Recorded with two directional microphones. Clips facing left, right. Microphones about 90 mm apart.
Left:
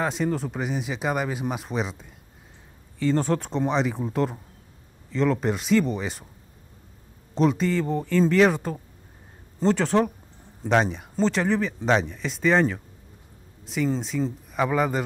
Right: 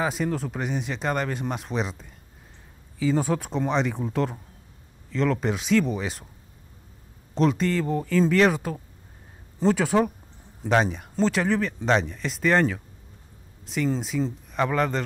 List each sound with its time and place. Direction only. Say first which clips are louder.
0.0 s speech: left 1 dB; centre (ahead or behind)
7.3 s speech: left 1 dB; centre (ahead or behind)